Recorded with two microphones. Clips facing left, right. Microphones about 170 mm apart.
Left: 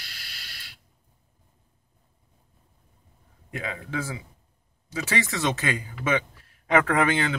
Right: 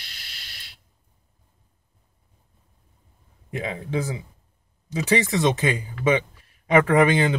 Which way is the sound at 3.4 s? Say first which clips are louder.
Right 4 dB; 25° right (ahead or behind).